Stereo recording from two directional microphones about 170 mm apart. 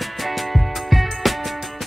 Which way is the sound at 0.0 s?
Centre (ahead or behind).